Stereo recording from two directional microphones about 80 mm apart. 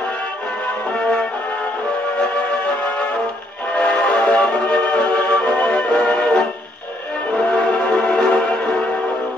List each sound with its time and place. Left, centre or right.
3.7 s music: centre